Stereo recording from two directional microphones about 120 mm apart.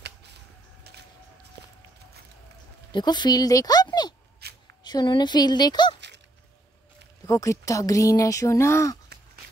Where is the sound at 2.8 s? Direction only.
40° left (ahead or behind).